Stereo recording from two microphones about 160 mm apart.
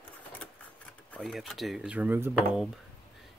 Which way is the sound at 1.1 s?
Centre (ahead or behind).